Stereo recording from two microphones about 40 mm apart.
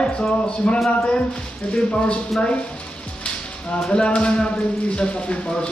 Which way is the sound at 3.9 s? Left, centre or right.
Left.